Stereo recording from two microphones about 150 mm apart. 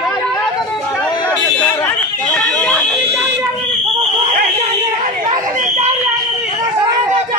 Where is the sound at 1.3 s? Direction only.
15° left (ahead or behind).